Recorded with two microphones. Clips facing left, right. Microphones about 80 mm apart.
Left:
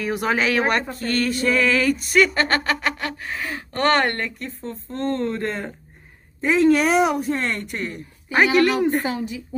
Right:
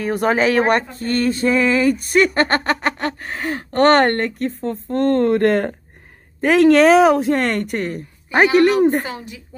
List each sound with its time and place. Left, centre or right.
0.0 s a woman's voice: right
0.9 s a sound: right
2.0 s a woman's voice: right